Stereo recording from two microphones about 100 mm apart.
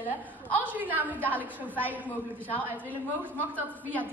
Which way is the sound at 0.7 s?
20° right (ahead or behind).